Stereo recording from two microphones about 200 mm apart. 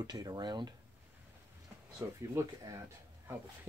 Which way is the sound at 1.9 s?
15° right (ahead or behind).